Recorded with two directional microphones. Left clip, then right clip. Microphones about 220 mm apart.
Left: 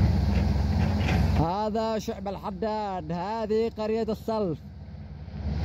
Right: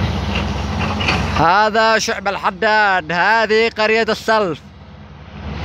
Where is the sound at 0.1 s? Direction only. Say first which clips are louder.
Right 10 dB; 30° right (ahead or behind).